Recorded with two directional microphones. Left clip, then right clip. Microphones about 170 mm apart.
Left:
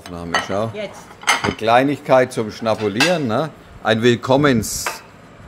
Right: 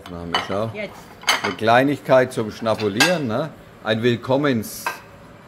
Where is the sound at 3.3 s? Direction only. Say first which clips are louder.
Left 4 dB; 30° left (ahead or behind).